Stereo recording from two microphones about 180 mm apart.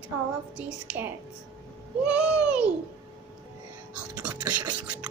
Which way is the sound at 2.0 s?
5° right (ahead or behind).